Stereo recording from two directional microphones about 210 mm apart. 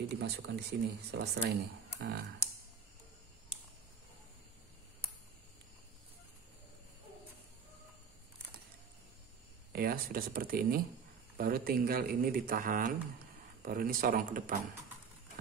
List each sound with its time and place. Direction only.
0.2 s speech: 50° right (ahead or behind)
9.7 s speech: 45° right (ahead or behind)